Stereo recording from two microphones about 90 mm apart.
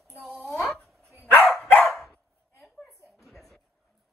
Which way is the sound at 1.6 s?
15° left (ahead or behind).